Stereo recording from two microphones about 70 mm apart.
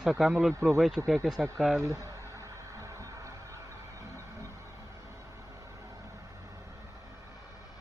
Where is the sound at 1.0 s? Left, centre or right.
Right.